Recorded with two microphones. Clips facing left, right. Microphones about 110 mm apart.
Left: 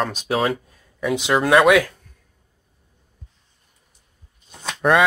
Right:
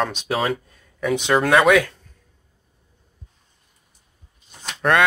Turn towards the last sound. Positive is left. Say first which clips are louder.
# left 2 dB
turn(degrees=5)  # may be behind; listen again after turning